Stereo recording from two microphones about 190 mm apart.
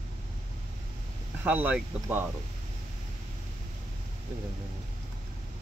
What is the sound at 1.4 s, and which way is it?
Speech, 10° right (ahead or behind).